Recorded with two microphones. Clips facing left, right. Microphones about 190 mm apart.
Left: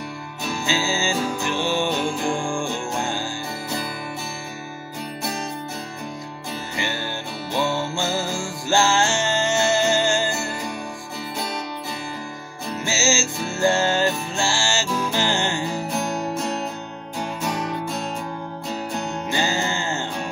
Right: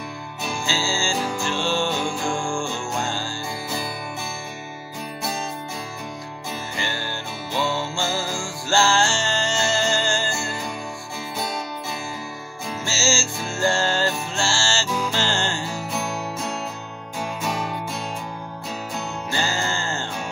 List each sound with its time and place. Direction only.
0.7 s music: 20° left (ahead or behind)
7.9 s music: 20° left (ahead or behind)
12.8 s music: 20° left (ahead or behind)
19.3 s music: 20° left (ahead or behind)